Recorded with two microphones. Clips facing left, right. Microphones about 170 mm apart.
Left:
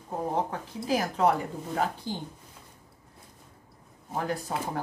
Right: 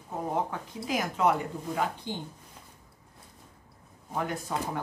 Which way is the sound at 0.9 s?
35° left (ahead or behind).